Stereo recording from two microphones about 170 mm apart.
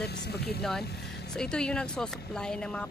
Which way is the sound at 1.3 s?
5° left (ahead or behind).